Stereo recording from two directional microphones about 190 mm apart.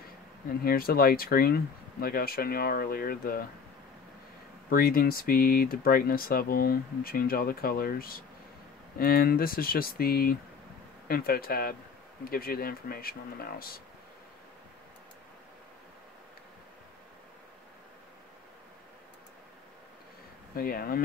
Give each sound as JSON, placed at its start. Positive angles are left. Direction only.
{"t": 0.7, "sound": "speech", "side_deg": 50}
{"t": 4.6, "sound": "speech", "side_deg": 50}
{"t": 20.5, "sound": "speech", "side_deg": 50}